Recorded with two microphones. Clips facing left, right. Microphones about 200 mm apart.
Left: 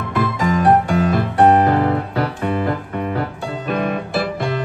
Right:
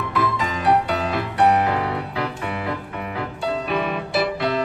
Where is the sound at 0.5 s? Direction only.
50° left (ahead or behind).